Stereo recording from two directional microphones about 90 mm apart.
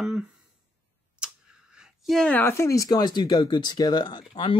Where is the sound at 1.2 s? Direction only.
10° right (ahead or behind).